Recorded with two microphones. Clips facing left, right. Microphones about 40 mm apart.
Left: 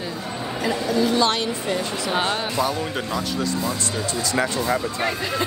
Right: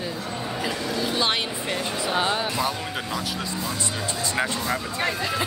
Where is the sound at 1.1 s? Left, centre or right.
Right.